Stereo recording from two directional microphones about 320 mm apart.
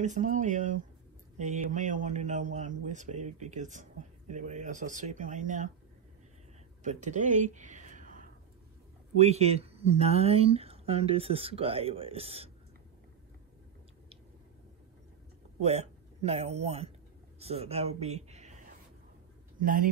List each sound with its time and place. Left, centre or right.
0.0 s a man's voice: right
6.8 s a sound: right
9.2 s speech: centre
15.6 s speech: centre
19.6 s a man's voice: right